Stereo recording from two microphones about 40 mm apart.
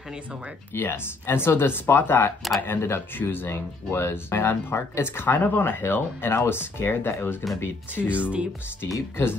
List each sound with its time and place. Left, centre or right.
0.7 s speech: left
5.3 s speech: left
6.2 s speech: left
8.1 s speech: right